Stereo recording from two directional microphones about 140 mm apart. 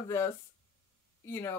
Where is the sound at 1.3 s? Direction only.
15° left (ahead or behind).